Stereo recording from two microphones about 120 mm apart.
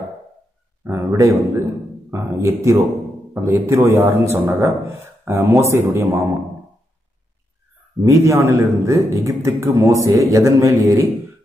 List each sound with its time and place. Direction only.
0.8 s a man's voice: 25° right (ahead or behind)
8.0 s a man's voice: 25° right (ahead or behind)